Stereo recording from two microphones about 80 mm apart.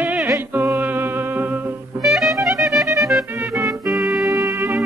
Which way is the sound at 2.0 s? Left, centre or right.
Centre.